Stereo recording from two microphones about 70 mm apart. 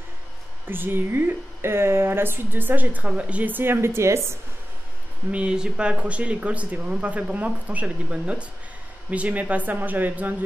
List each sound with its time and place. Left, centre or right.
0.7 s speech: right
5.3 s a woman's voice: centre